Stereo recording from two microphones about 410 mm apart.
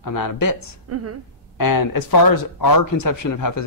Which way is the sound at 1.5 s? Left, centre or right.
Left.